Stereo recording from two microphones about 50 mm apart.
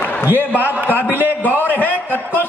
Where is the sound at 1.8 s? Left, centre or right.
Left.